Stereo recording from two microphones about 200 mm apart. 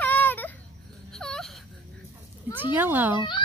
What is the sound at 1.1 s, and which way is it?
Whimper, 5° left (ahead or behind).